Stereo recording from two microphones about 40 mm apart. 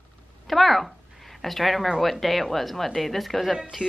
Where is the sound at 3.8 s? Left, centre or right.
Right.